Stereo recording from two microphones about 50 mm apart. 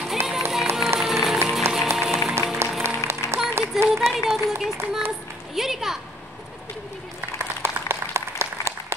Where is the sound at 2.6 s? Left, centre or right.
Right.